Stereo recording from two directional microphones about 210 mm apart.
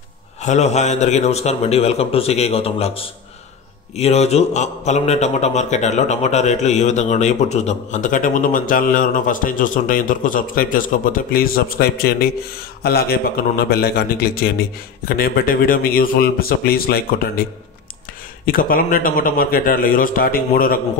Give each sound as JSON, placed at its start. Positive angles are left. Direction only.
{"t": 0.4, "sound": "a man's voice", "side_deg": 35}
{"t": 18.4, "sound": "a man's voice", "side_deg": 45}